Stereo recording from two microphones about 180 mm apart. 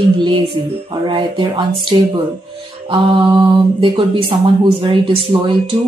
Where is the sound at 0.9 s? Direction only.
25° right (ahead or behind).